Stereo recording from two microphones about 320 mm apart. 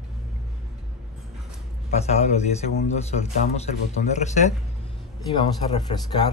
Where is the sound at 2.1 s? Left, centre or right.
Centre.